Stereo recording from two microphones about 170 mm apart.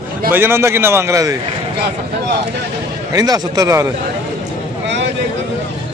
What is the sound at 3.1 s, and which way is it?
Speech, 20° right (ahead or behind).